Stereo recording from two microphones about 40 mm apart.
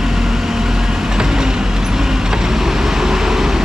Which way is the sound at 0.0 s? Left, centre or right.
Centre.